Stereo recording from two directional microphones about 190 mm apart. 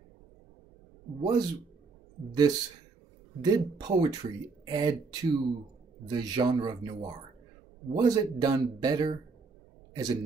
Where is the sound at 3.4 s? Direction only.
20° right (ahead or behind).